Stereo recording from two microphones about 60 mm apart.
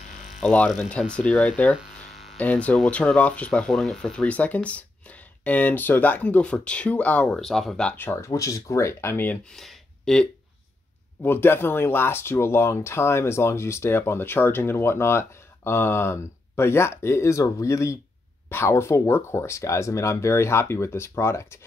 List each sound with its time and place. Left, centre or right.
0.4 s speech: left
3.7 s speech: centre
4.2 s speech: left
7.2 s speech: centre
7.9 s speech: left
8.2 s speech: left
9.1 s speech: left
9.6 s a sound: centre
11.2 s speech: left
18.5 s speech: left